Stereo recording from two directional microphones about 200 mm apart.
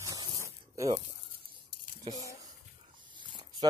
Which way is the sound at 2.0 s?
20° right (ahead or behind).